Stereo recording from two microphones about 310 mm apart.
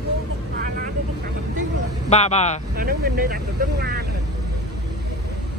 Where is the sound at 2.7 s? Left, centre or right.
Right.